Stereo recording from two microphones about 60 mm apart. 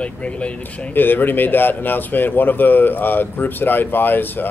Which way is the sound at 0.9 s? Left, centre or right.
Left.